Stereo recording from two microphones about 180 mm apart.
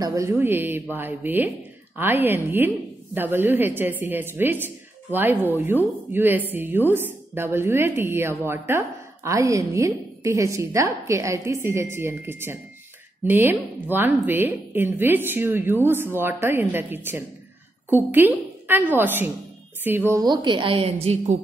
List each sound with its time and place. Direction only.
0.0 s a woman's voice: 15° right (ahead or behind); by 21.4 s 35° right (ahead or behind)